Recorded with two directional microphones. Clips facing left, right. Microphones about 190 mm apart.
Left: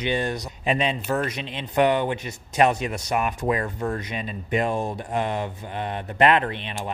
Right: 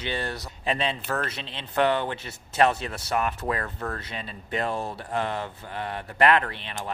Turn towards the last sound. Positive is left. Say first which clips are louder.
# left 4 dB
turn(degrees=20)  # may be behind; listen again after turning